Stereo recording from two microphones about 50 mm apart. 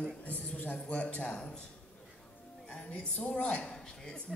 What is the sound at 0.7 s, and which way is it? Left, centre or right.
A woman's voice, left.